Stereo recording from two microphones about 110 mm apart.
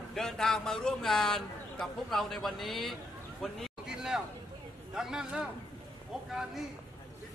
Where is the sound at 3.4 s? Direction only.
Centre (ahead or behind).